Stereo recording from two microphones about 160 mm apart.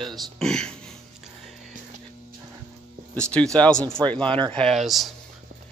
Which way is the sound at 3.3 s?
5° left (ahead or behind).